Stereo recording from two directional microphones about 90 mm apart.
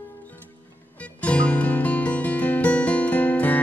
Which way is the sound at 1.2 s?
15° left (ahead or behind).